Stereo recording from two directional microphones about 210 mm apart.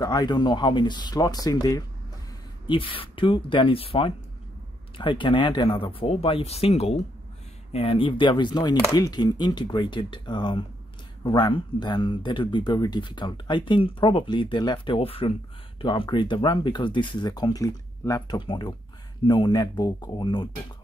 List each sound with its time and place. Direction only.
0.0 s speech: 20° left (ahead or behind)